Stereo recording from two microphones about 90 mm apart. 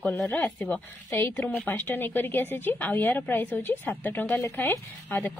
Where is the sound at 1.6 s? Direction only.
20° left (ahead or behind).